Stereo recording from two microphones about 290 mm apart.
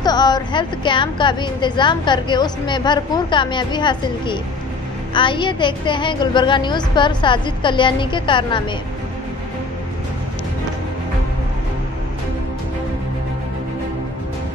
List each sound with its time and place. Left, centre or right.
0.0 s a woman's voice: centre